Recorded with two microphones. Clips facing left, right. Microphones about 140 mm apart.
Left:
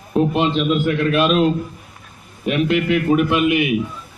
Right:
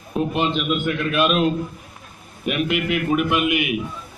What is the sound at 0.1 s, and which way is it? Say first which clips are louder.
A man's voice: left 4 dB; 35° left (ahead or behind).